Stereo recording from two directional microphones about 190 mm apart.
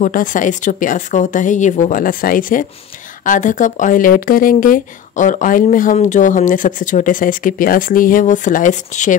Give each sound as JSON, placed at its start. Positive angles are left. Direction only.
{"t": 0.0, "sound": "speech", "side_deg": 45}